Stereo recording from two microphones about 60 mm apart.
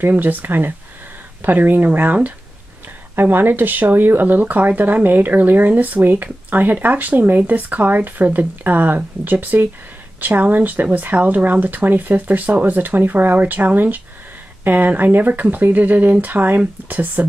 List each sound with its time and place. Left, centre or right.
0.0 s speech: right